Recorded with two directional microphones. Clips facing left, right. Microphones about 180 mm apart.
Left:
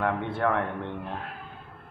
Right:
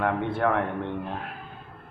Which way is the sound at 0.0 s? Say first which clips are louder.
Right 2 dB; 45° right (ahead or behind).